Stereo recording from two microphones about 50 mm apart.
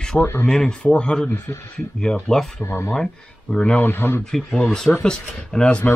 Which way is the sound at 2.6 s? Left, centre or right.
Left.